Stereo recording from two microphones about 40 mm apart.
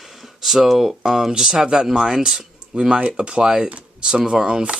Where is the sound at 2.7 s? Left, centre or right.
Right.